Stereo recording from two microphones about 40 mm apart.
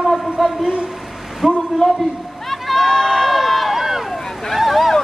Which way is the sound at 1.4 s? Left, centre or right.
Centre.